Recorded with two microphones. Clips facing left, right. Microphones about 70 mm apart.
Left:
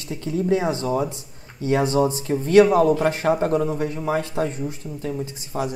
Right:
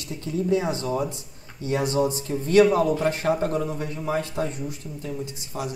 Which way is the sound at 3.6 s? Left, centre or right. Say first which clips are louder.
Left 5 dB; left.